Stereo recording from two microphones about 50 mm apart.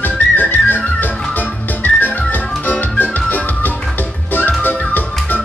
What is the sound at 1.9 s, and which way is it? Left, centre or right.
Music, left.